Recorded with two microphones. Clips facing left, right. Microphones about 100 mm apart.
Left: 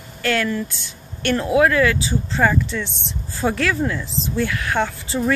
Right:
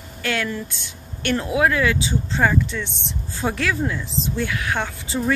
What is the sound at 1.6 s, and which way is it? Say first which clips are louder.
Speech: left 2 dB; 15° right (ahead or behind).